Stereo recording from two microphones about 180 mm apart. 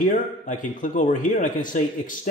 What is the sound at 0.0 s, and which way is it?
Speech, 45° left (ahead or behind).